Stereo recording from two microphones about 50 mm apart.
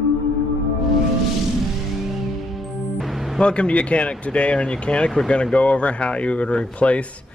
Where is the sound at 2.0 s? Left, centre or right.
Centre.